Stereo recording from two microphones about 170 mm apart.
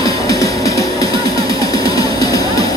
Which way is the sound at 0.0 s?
20° left (ahead or behind).